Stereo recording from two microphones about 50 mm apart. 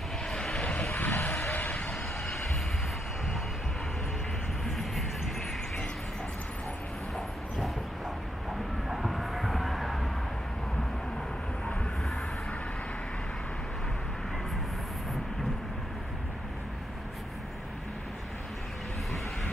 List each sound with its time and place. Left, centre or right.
0.3 s vehicle: centre
0.9 s vehicle: left
4.6 s music: centre
8.8 s a sound: centre